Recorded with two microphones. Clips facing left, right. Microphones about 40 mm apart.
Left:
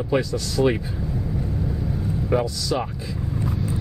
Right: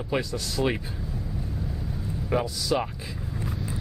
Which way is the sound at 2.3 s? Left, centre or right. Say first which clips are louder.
Left 2 dB; centre.